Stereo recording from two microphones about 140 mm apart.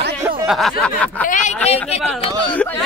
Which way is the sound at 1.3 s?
60° left (ahead or behind).